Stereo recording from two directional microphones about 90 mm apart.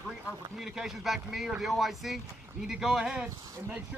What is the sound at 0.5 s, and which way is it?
Speech, 5° right (ahead or behind).